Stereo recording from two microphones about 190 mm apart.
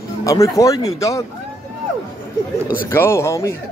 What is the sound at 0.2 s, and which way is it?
A man's voice, 15° left (ahead or behind).